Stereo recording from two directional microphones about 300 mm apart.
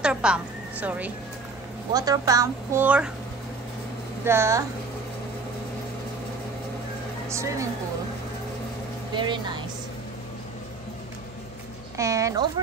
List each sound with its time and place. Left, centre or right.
0.0 s a sound: centre
2.0 s a woman's voice: centre
4.2 s a woman's voice: centre
7.2 s a woman's voice: centre
9.1 s a woman's voice: centre
12.0 s a woman's voice: centre